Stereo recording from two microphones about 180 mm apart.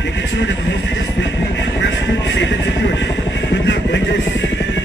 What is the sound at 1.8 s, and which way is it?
Music, 85° left.